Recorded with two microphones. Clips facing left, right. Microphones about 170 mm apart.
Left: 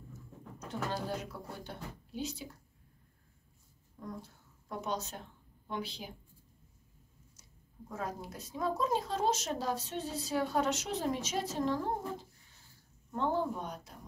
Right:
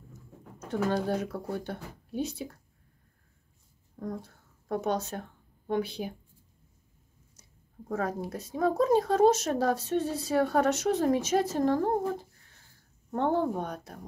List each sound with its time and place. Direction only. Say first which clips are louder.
0.7 s speech: right 9 dB; 55° right (ahead or behind)
3.9 s speech: right 7 dB; 55° right (ahead or behind)
7.9 s speech: right 9 dB; 60° right (ahead or behind)